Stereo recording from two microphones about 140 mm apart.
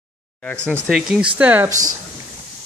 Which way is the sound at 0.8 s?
5° right (ahead or behind).